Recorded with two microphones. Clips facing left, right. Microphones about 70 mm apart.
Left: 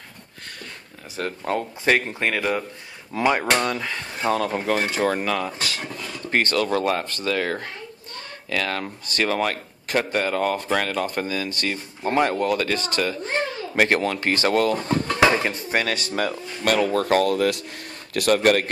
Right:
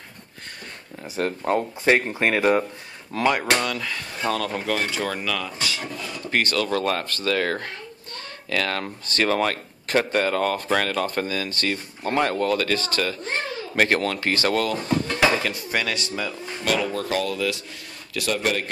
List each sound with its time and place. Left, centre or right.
1.0 s speech: centre
2.2 s speech: right
3.3 s speech: left
6.4 s speech: left
14.3 s speech: left
16.2 s speech: left